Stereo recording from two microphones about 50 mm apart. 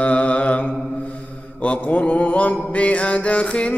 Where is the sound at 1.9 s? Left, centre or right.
Left.